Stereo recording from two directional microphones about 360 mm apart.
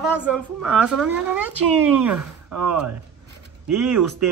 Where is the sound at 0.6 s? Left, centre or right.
Centre.